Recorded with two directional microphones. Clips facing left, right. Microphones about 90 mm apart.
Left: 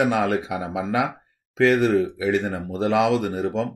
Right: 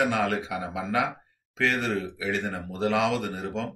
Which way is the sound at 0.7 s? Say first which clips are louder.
Left 4 dB; 15° left (ahead or behind).